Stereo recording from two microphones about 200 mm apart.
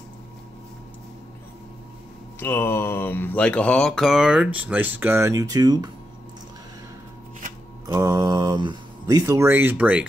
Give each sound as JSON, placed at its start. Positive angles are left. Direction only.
{"t": 2.4, "sound": "mantra", "side_deg": 10}
{"t": 7.8, "sound": "speech", "side_deg": -15}